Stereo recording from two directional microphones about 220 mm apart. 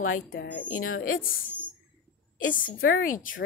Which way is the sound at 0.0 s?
65° left (ahead or behind).